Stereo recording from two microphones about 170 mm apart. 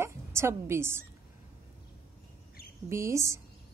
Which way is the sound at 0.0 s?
15° right (ahead or behind).